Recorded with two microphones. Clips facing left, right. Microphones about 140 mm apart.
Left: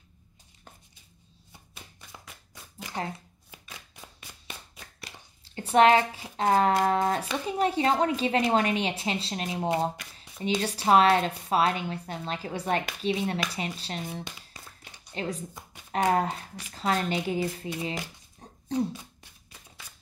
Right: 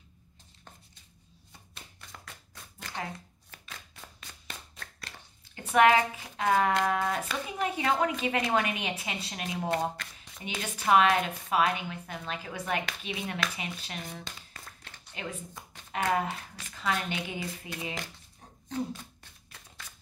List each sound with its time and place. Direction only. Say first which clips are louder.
2.0 s a sound: right 2 dB; 15° left (ahead or behind)
5.5 s speech: left 3 dB; 30° left (ahead or behind)
9.7 s shuffling cards: left 3 dB; 10° left (ahead or behind)
10.4 s speech: left 6 dB; 30° left (ahead or behind)
14.2 s a sound: left 2 dB; 15° left (ahead or behind)
15.1 s speech: left 6 dB; 35° left (ahead or behind)